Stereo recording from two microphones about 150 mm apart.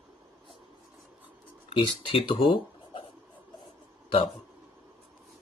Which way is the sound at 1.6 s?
35° left (ahead or behind).